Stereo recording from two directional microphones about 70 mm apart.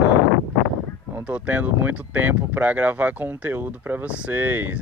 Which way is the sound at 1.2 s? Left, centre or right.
Centre.